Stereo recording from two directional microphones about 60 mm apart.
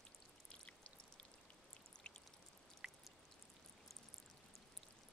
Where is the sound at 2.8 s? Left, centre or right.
Centre.